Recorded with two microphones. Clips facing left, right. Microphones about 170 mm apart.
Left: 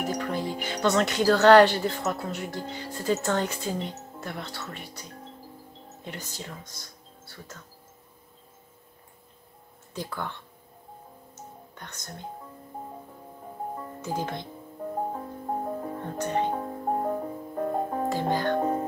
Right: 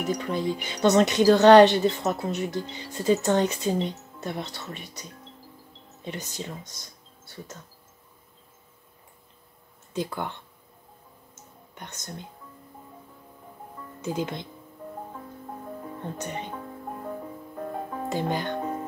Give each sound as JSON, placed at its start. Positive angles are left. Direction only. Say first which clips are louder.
{"t": 0.1, "sound": "speech", "louder": "right 2 dB", "side_deg": 55}
{"t": 0.8, "sound": "speech", "louder": "right 4 dB", "side_deg": -20}
{"t": 2.6, "sound": "speech", "louder": "left 3 dB", "side_deg": 45}
{"t": 3.1, "sound": "speech", "louder": "right 4 dB", "side_deg": -20}
{"t": 6.0, "sound": "speech", "louder": "right 4 dB", "side_deg": -20}
{"t": 9.9, "sound": "speech", "louder": "right 4 dB", "side_deg": -20}
{"t": 11.7, "sound": "music", "louder": "right 2 dB", "side_deg": -20}
{"t": 14.0, "sound": "speech", "louder": "right 2 dB", "side_deg": -20}
{"t": 14.8, "sound": "music", "louder": "left 8 dB", "side_deg": 45}
{"t": 18.1, "sound": "speech", "louder": "right 1 dB", "side_deg": -20}
{"t": 18.5, "sound": "music", "louder": "left 5 dB", "side_deg": 45}